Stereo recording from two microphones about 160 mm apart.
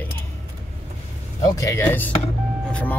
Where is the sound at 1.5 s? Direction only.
20° left (ahead or behind).